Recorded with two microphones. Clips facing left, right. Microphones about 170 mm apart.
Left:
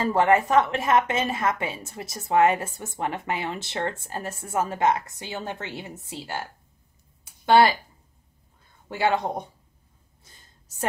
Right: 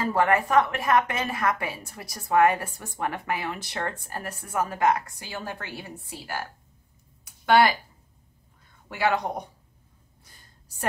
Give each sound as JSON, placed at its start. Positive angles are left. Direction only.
{"t": 0.0, "sound": "a woman's voice", "side_deg": 25}
{"t": 8.8, "sound": "a woman's voice", "side_deg": 30}